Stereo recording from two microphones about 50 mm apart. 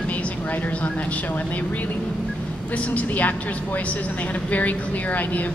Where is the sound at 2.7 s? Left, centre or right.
Left.